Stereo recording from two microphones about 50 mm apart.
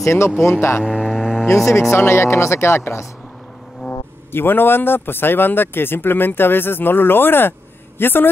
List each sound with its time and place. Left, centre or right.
0.0 s speech: left
0.4 s speech: left
0.8 s cattle: centre
1.5 s speech: left
4.3 s speech: left